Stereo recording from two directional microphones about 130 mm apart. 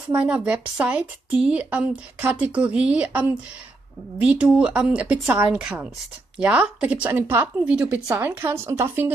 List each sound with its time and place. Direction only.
0.1 s a woman's voice: 10° right (ahead or behind)